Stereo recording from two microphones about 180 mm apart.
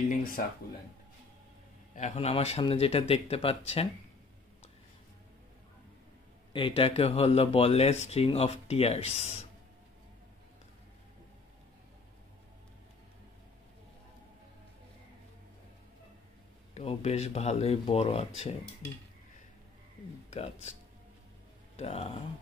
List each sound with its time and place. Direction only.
2.0 s speech: 40° left (ahead or behind)
6.5 s speech: 30° left (ahead or behind)
16.7 s speech: 35° left (ahead or behind)
20.2 s music: 35° left (ahead or behind)
21.7 s speech: 35° left (ahead or behind)